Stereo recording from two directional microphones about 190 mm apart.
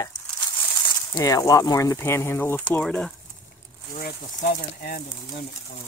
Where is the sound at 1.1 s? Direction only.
15° left (ahead or behind).